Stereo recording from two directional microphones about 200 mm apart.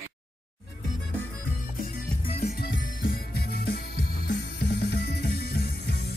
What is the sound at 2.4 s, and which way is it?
Music, 50° left (ahead or behind).